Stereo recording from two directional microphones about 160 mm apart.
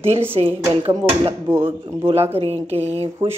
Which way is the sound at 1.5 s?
15° right (ahead or behind).